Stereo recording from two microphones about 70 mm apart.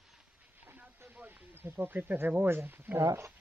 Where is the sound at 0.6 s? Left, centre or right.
Right.